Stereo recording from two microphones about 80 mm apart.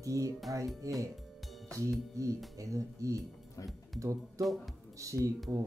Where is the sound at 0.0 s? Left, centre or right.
Right.